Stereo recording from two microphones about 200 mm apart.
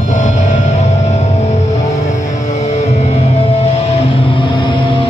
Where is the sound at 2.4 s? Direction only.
35° left (ahead or behind).